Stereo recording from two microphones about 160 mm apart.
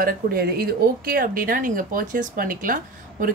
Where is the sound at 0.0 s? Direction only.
65° right (ahead or behind).